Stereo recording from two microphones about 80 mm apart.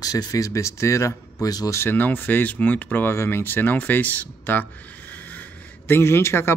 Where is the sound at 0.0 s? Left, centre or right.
Left.